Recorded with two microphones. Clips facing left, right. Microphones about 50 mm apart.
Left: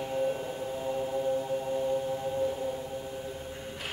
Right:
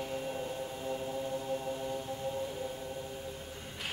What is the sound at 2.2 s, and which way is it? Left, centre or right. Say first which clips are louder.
Singing bowl: left 6 dB; centre.